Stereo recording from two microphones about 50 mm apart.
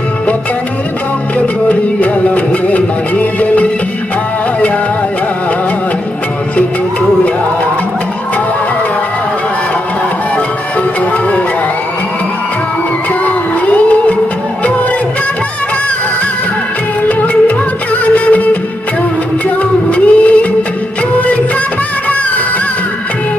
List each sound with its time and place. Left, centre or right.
1.4 s music: left
13.2 s music: left
17.2 s music: left
19.9 s music: left